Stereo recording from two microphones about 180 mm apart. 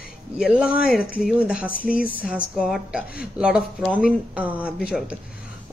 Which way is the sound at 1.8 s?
50° left (ahead or behind).